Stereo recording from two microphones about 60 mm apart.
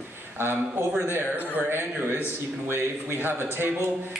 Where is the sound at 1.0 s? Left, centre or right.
Right.